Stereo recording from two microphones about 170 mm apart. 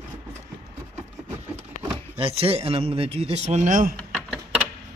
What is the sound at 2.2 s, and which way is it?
A man's voice, 35° right (ahead or behind).